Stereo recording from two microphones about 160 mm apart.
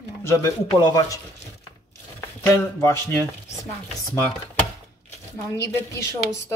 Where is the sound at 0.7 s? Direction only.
25° left (ahead or behind).